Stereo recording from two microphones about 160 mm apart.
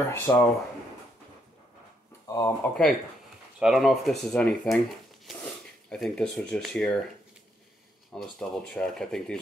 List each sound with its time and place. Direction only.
0.1 s speech: 15° left (ahead or behind)
2.2 s speech: 20° left (ahead or behind)
3.5 s speech: 5° right (ahead or behind)
8.1 s speech: 5° left (ahead or behind)